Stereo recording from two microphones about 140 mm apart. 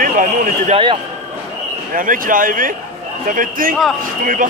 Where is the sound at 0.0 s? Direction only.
75° right (ahead or behind).